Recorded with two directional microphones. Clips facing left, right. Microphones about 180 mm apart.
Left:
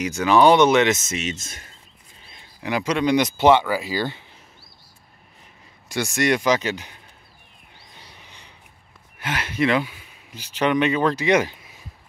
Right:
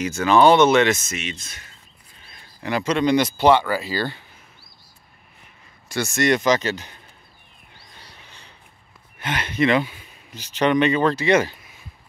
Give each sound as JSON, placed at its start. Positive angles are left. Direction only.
{"t": 0.0, "sound": "speech", "side_deg": 15}
{"t": 1.2, "sound": "speech", "side_deg": 45}
{"t": 2.2, "sound": "a sound", "side_deg": 20}
{"t": 2.6, "sound": "speech", "side_deg": 10}
{"t": 5.9, "sound": "speech", "side_deg": 15}
{"t": 7.9, "sound": "a sound", "side_deg": 15}
{"t": 9.2, "sound": "speech", "side_deg": 5}